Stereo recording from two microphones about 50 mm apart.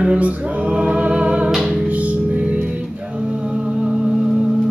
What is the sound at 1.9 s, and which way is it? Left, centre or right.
Music, right.